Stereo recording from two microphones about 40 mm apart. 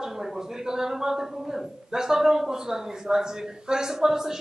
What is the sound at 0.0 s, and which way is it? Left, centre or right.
A man's voice, centre.